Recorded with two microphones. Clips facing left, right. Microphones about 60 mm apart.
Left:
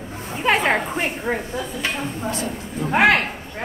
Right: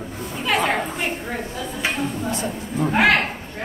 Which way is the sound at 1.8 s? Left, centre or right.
Right.